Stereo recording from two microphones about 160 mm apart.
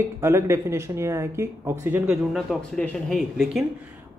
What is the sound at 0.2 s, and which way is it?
Speech, 15° right (ahead or behind).